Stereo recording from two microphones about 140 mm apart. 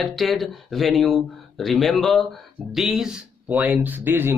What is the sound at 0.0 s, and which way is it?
Speech, centre (ahead or behind).